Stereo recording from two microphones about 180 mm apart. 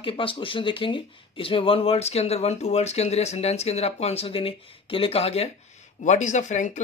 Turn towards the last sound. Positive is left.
turn(degrees=40)  # may be behind; listen again after turning